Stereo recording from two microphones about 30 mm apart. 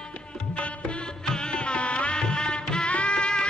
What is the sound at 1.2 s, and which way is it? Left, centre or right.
Music, left.